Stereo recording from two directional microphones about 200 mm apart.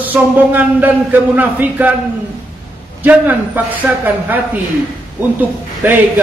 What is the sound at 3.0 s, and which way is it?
A man's voice, 10° right (ahead or behind).